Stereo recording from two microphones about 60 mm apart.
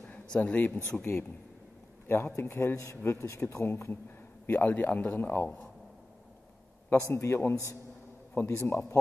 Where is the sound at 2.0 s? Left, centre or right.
Left.